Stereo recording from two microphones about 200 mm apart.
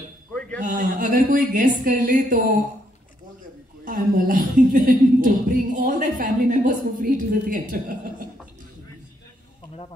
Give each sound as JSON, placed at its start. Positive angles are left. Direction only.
{"t": 0.6, "sound": "a woman's voice", "side_deg": -40}
{"t": 3.8, "sound": "a woman's voice", "side_deg": -45}